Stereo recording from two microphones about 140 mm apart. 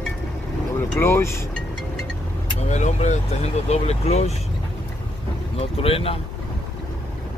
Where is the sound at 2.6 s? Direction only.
55° left (ahead or behind).